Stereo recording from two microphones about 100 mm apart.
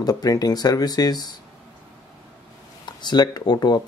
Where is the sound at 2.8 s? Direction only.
45° left (ahead or behind).